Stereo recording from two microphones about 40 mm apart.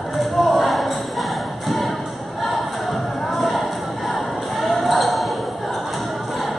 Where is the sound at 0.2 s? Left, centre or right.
Centre.